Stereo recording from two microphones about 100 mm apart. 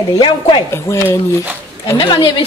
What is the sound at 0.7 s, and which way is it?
Speech, 25° left (ahead or behind).